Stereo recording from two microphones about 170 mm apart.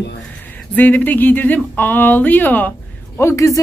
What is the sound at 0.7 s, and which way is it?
Speech, 10° left (ahead or behind).